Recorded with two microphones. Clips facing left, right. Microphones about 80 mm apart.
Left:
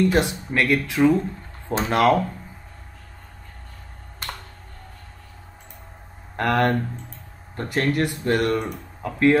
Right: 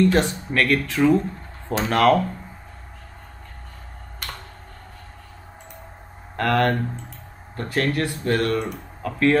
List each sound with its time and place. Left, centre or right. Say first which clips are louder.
0.0 s speech: right 1 dB; centre
6.3 s speech: even; centre